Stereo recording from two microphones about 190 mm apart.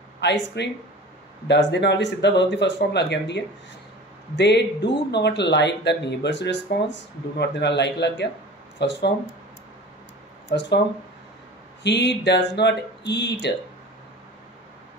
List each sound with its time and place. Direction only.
0.2 s speech: 65° left (ahead or behind)
10.5 s speech: 70° left (ahead or behind)
11.8 s speech: 65° left (ahead or behind)